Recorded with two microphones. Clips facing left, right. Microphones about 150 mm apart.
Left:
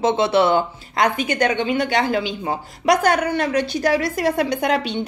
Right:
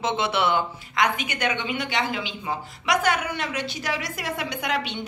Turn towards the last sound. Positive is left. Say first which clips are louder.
# left 7 dB
turn(degrees=40)  # may be behind; listen again after turning